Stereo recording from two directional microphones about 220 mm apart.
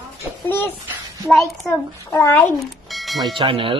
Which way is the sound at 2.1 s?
10° left (ahead or behind).